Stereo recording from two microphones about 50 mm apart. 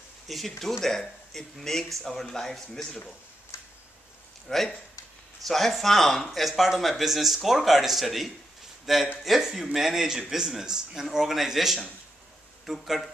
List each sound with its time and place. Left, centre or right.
0.3 s speech: centre
3.5 s a sound: left
4.5 s a man's voice: centre